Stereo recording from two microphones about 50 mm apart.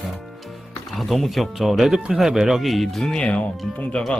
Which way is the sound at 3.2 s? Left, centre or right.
Left.